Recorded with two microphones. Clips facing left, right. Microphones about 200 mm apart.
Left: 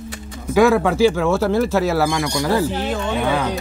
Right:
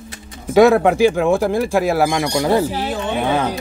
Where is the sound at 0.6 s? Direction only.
20° right (ahead or behind).